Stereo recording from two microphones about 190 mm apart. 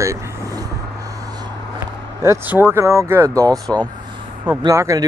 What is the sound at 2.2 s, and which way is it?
Speech, 10° right (ahead or behind).